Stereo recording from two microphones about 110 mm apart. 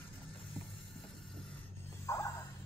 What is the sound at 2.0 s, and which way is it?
Music, 25° left (ahead or behind).